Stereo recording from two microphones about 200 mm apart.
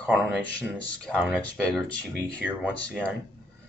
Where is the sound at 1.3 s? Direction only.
5° left (ahead or behind).